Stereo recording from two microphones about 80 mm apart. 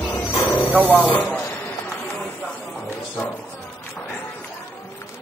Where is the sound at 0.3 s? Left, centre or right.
Left.